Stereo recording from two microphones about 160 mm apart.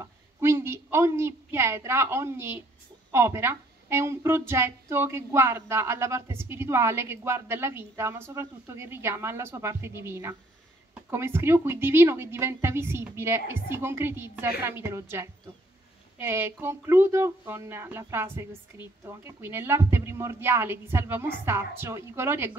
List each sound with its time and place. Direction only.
0.0 s a woman's voice: 15° right (ahead or behind)